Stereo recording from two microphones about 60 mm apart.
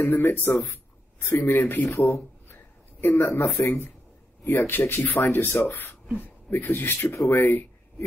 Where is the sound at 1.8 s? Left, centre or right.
Left.